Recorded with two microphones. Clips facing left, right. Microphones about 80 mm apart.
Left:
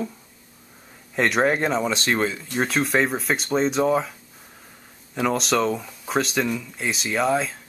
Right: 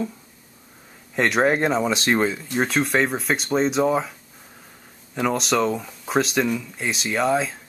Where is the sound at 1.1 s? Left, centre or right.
Centre.